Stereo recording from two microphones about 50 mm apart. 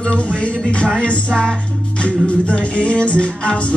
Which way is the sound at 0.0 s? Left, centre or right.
Left.